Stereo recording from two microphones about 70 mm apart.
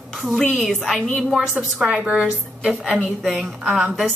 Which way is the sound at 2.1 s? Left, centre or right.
Centre.